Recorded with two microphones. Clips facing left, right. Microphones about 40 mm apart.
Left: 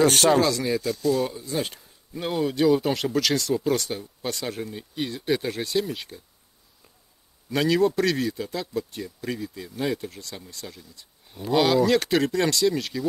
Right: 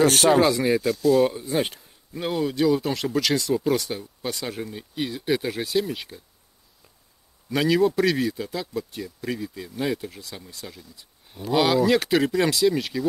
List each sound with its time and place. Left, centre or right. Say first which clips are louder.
0.0 s a man's voice: right 1 dB; centre
0.4 s speech: right 3 dB; centre
0.8 s a man's voice: right 6 dB; centre
1.3 s speech: right 4 dB; right
2.1 s a man's voice: even; centre
7.4 s a man's voice: right 1 dB; centre